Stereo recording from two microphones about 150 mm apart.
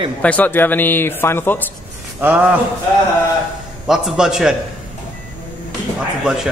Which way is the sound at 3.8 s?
5° right (ahead or behind).